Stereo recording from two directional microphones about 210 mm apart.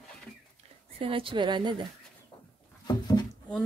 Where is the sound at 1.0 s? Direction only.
25° right (ahead or behind).